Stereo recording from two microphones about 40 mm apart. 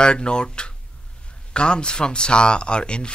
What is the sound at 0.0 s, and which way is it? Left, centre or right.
Speech, left.